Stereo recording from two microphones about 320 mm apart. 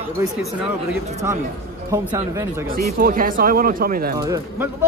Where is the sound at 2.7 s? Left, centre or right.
Right.